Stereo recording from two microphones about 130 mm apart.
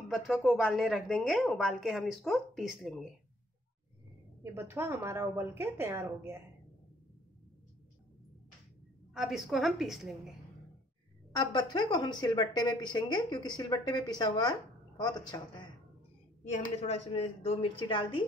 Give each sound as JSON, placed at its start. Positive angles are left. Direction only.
{"t": 0.1, "sound": "a woman's voice", "side_deg": 0}
{"t": 4.4, "sound": "a woman's voice", "side_deg": -20}
{"t": 9.1, "sound": "a woman's voice", "side_deg": -5}
{"t": 11.3, "sound": "a woman's voice", "side_deg": 35}
{"t": 16.8, "sound": "a woman's voice", "side_deg": 50}